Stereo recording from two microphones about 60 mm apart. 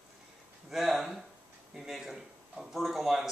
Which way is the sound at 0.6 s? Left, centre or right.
Centre.